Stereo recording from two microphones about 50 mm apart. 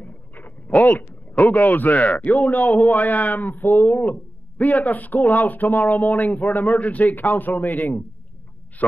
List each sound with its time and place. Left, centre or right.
0.0 s a man's voice: left